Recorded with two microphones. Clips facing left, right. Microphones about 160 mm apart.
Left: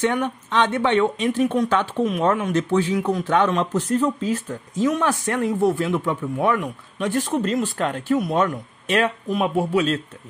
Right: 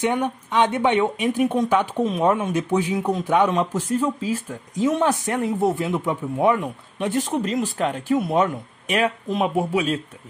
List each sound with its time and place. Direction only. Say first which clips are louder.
0.0 s speech: even; 15° right (ahead or behind)
4.8 s speech: right 1 dB; 25° right (ahead or behind)